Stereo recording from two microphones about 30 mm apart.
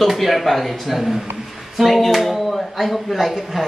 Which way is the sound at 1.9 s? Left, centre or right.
Centre.